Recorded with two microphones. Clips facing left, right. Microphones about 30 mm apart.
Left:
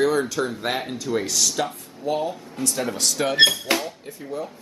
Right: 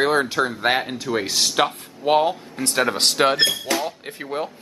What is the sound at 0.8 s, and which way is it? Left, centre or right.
Speech, right.